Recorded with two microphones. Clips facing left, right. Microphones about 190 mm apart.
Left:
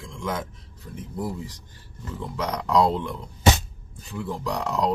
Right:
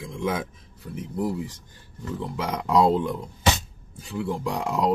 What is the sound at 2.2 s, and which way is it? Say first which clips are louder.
Speech: left 1 dB; 10° right (ahead or behind).